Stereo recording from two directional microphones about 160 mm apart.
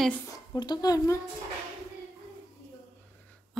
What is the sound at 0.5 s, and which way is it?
Speech, 25° left (ahead or behind).